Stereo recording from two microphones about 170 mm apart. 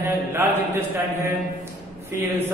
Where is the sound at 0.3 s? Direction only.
15° right (ahead or behind).